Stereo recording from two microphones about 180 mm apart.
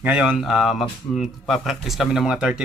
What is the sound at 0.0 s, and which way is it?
Speech, 5° right (ahead or behind).